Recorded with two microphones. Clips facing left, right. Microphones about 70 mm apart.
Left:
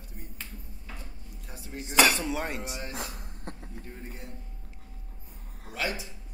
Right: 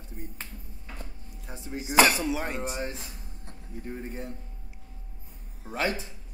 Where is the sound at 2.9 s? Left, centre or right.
Left.